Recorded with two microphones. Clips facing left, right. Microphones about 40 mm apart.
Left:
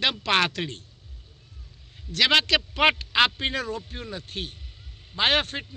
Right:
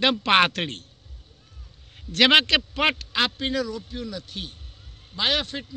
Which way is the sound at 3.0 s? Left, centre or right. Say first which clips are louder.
Left 3 dB; centre.